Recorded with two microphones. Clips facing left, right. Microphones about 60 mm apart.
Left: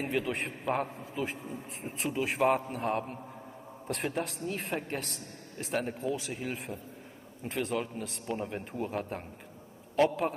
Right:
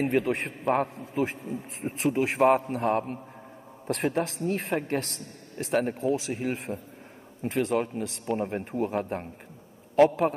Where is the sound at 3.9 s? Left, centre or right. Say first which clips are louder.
Right 6 dB; right.